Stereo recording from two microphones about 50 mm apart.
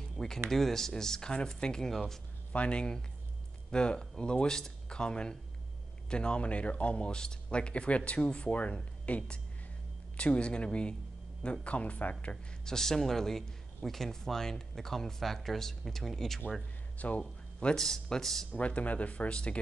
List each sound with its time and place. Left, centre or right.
0.5 s speech: centre
2.5 s speech: left
12.6 s speech: centre
17.0 s speech: left
17.7 s speech: centre
18.5 s speech: left